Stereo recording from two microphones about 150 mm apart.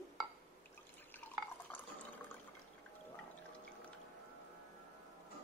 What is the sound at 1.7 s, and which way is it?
Water, 10° left (ahead or behind).